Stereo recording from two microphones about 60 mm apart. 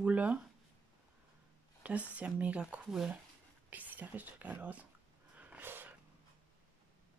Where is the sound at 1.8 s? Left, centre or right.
Right.